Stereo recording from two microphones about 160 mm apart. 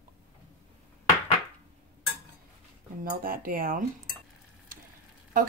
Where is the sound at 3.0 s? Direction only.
60° right (ahead or behind).